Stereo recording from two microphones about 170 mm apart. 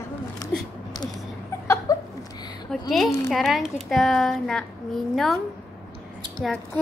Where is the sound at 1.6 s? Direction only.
15° left (ahead or behind).